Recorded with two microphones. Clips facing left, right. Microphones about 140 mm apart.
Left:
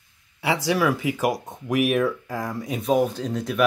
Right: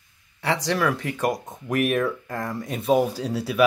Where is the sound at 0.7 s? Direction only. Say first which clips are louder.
Left 4 dB; 5° left (ahead or behind).